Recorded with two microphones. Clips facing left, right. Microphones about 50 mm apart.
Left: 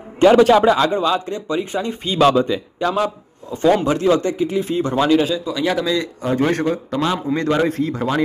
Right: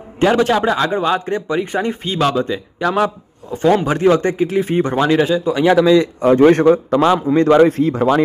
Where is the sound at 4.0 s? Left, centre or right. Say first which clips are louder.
Right 3 dB; right.